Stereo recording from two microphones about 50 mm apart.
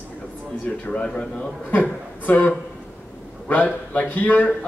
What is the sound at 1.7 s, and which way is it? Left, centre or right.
Speech, left.